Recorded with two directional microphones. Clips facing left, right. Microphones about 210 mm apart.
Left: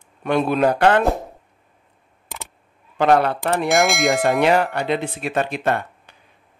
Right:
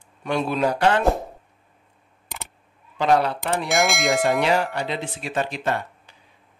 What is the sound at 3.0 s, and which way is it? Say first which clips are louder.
Speech: left 3 dB; 55° left (ahead or behind).